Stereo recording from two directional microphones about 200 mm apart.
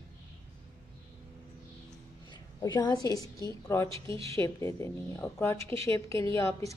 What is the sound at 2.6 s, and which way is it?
Speech, 20° left (ahead or behind).